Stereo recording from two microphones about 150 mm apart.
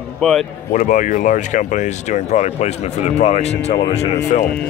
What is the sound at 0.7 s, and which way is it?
Speech, 55° left (ahead or behind).